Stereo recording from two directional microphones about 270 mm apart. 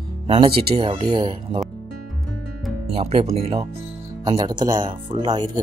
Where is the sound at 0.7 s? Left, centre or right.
Centre.